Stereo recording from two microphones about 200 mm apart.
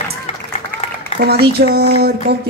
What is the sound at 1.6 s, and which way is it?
Speech, 55° right (ahead or behind).